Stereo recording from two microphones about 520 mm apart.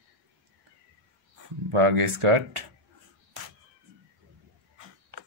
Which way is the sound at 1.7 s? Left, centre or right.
Right.